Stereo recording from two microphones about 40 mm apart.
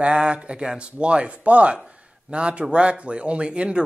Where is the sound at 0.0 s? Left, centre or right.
Right.